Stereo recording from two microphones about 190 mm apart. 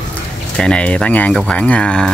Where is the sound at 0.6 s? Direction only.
5° left (ahead or behind).